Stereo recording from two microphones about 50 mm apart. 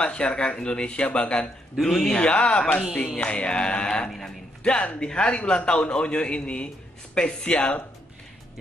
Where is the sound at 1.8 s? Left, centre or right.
Centre.